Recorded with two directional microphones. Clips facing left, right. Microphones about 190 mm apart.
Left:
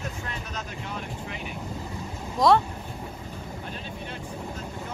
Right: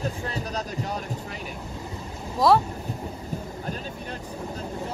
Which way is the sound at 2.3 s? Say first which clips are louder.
Right 1 dB; 5° right (ahead or behind).